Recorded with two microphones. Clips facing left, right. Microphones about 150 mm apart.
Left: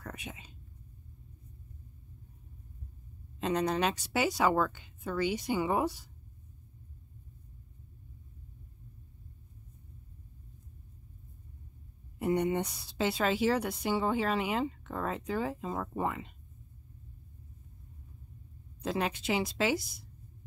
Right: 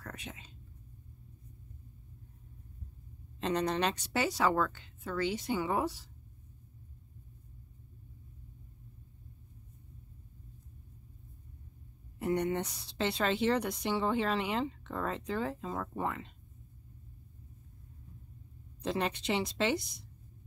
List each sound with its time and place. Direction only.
0.0 s a sound: 10° left (ahead or behind)
3.3 s speech: 5° left (ahead or behind)
12.2 s speech: 10° left (ahead or behind)
18.8 s speech: 5° left (ahead or behind)